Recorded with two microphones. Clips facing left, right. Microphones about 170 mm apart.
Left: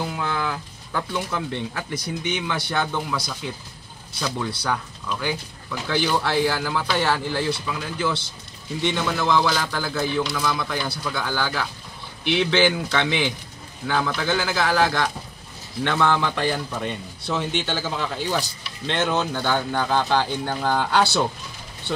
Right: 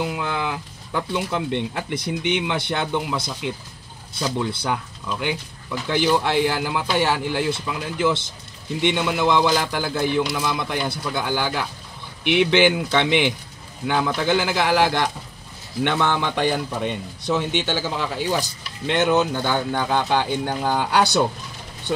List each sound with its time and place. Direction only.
0.1 s a man's voice: 20° right (ahead or behind)